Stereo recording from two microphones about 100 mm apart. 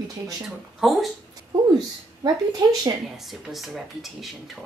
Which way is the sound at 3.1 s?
5° right (ahead or behind).